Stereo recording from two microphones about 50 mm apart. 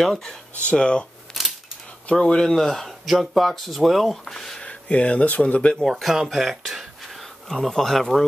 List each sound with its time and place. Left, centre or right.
0.0 s speech: centre
0.6 s speech: left
2.0 s speech: centre
4.6 s speech: left
5.9 s speech: centre